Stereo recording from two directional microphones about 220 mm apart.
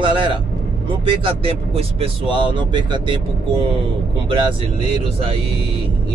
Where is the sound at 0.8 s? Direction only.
25° right (ahead or behind).